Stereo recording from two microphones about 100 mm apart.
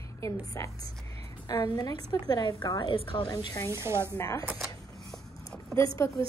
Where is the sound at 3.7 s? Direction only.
25° right (ahead or behind).